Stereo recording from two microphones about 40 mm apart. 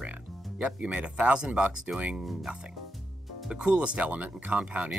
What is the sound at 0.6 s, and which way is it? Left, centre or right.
Speech, right.